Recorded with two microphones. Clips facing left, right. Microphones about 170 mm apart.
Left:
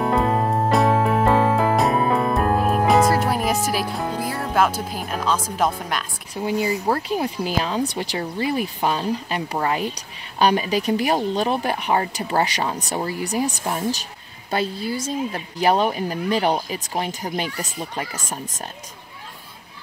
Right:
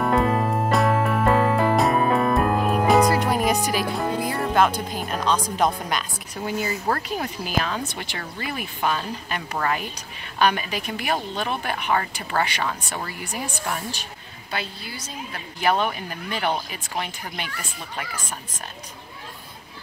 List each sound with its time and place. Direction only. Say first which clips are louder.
0.2 s music: left 1 dB; 25° left (ahead or behind)
0.7 s music: left 3 dB; centre (ahead or behind)
2.0 s music: even; 30° left (ahead or behind)
2.3 s music: left 1 dB; centre (ahead or behind)
6.4 s speech: left 4 dB; 15° left (ahead or behind)
7.0 s a woman's voice: left 5 dB; 25° left (ahead or behind)
9.9 s a woman's voice: left 2 dB; 35° left (ahead or behind)